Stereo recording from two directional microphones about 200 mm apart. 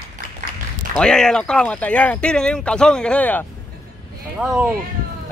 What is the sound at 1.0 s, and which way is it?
Speech, 5° left (ahead or behind).